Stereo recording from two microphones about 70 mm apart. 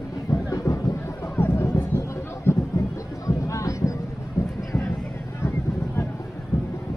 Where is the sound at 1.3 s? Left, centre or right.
Left.